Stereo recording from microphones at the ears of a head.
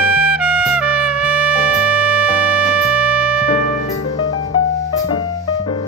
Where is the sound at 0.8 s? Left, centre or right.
Right.